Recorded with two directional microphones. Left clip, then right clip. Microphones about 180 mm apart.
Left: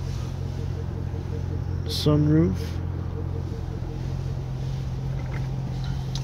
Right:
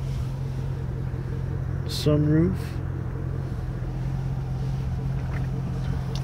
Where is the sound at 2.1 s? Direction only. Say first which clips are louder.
Left 1 dB; 20° left (ahead or behind).